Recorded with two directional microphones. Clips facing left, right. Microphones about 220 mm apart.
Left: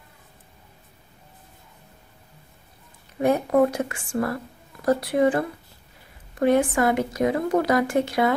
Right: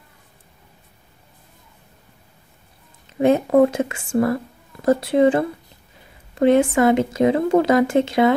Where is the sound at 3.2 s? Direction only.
25° right (ahead or behind).